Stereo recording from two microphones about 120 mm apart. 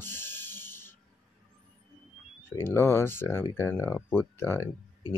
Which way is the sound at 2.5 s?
20° left (ahead or behind).